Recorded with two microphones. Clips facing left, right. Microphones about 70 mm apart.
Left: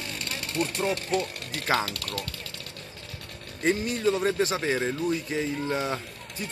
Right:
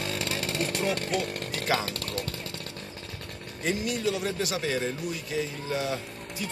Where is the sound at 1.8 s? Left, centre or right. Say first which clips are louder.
Right 1 dB; right.